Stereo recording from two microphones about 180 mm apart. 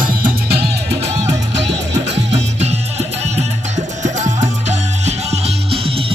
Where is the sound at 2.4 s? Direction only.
35° right (ahead or behind).